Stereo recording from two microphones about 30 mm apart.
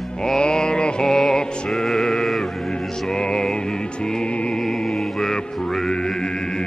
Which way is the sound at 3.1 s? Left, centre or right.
Left.